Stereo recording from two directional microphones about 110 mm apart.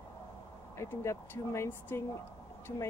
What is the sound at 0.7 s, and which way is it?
Speech, 25° left (ahead or behind).